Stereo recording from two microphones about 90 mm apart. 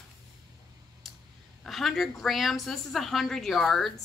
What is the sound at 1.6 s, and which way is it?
Speech, centre (ahead or behind).